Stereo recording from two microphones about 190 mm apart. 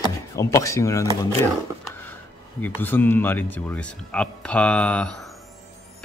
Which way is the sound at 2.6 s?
10° left (ahead or behind).